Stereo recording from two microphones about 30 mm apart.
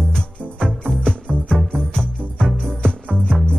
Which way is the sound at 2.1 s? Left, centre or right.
Left.